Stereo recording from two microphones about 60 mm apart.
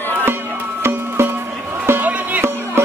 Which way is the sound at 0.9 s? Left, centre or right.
Right.